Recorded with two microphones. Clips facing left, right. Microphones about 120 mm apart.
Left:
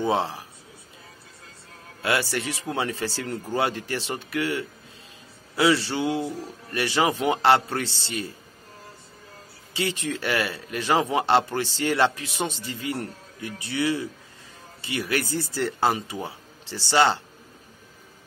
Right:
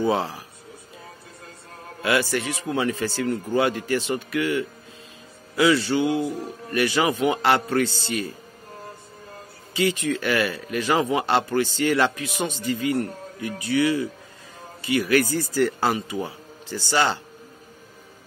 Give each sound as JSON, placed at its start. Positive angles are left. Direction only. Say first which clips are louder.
{"t": 0.0, "sound": "speech", "louder": "right 1 dB", "side_deg": 25}
{"t": 2.0, "sound": "a man's voice", "louder": "right 3 dB", "side_deg": 30}
{"t": 9.8, "sound": "speech", "louder": "right 5 dB", "side_deg": 30}